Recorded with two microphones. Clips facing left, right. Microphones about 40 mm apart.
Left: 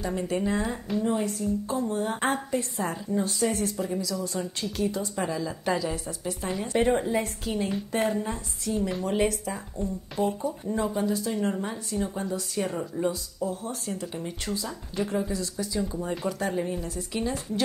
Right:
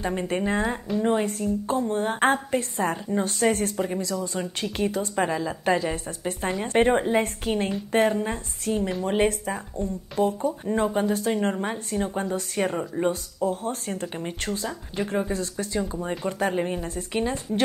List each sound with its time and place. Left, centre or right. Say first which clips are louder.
0.0 s a woman's voice: right 2 dB; right
10.2 s a woman's voice: right 4 dB; right